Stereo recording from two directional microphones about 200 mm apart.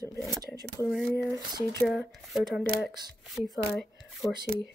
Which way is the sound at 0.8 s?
Centre (ahead or behind).